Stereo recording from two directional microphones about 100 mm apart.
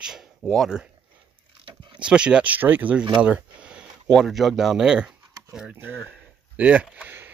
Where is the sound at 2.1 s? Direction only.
10° right (ahead or behind).